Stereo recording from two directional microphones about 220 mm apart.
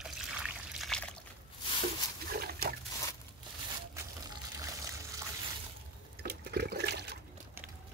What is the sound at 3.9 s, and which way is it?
Water, 15° right (ahead or behind).